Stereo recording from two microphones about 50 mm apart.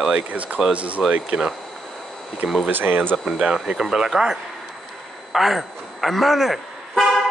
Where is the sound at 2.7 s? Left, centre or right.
Right.